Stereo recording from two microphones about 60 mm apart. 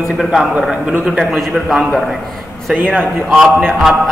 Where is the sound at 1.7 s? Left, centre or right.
Centre.